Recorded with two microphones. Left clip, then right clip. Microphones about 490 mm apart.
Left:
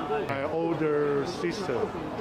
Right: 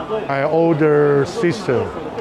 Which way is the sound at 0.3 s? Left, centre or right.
Right.